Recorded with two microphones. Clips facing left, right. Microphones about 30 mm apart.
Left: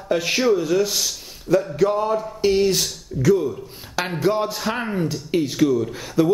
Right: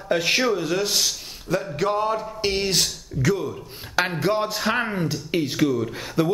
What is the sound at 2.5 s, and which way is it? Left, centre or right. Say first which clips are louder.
Speech: left 7 dB; right.